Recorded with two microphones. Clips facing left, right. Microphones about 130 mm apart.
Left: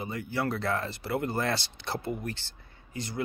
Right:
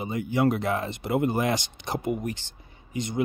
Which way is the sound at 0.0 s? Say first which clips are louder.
Right 7 dB; 20° right (ahead or behind).